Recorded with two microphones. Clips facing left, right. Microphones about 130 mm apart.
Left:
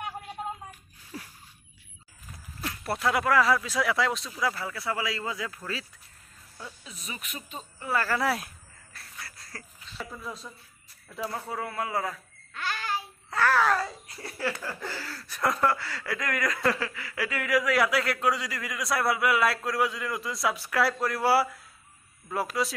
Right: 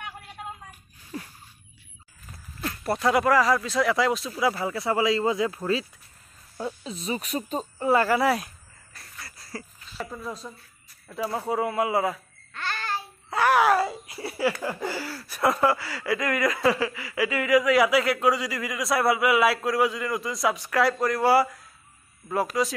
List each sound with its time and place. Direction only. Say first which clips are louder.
1.1 s a sound: right 5 dB; 5° left (ahead or behind)
2.6 s speech: right 4 dB; centre (ahead or behind)
4.4 s speech: right 5 dB; 20° right (ahead or behind); by 7.9 s 40° right (ahead or behind)
7.9 s speech: right 7 dB; 20° right (ahead or behind)
8.2 s speech: right 5 dB; centre (ahead or behind)
9.2 s a sound: right 6 dB; 5° right (ahead or behind)
10.4 s a man's voice: right 4 dB; 10° right (ahead or behind)
12.5 s child singing: right 1 dB; 10° left (ahead or behind)
13.3 s a sound: right 4 dB; 15° right (ahead or behind)
14.6 s speech: right 6 dB; 15° right (ahead or behind); by 22.8 s centre (ahead or behind)